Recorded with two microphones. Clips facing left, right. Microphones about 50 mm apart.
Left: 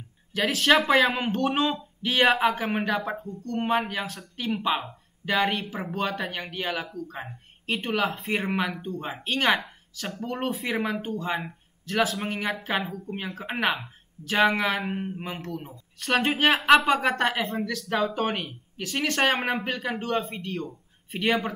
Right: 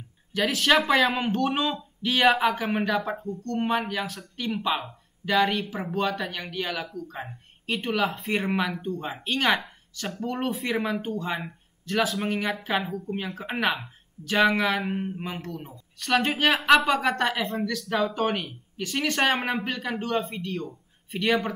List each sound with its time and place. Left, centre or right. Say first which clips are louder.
0.3 s speech: left 1 dB; centre